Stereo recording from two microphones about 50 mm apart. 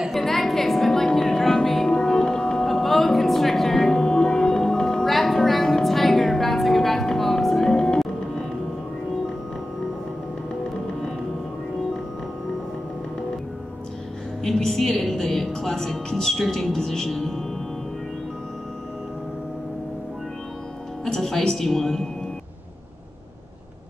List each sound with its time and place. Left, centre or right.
0.1 s music: centre
14.4 s a woman's voice: centre
21.0 s music: centre